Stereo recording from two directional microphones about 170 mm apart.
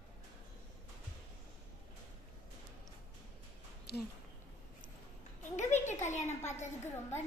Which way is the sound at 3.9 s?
75° left (ahead or behind).